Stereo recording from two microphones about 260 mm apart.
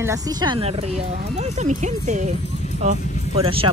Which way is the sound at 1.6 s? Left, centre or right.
Right.